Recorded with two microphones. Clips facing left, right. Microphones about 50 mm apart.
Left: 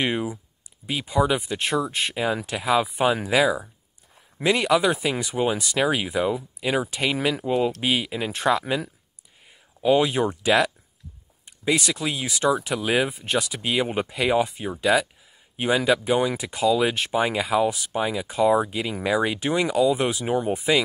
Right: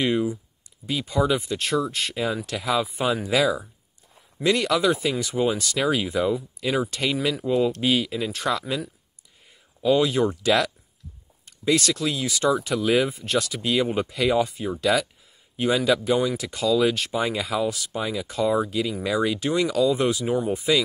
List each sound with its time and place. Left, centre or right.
0.0 s speech: left